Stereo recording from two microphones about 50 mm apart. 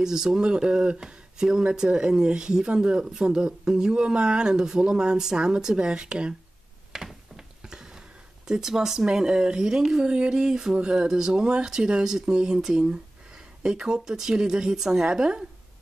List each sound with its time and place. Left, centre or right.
0.0 s speech: centre
6.9 s a sound: centre
8.5 s speech: centre